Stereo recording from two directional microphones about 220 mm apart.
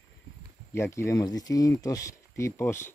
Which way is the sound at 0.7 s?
10° left (ahead or behind).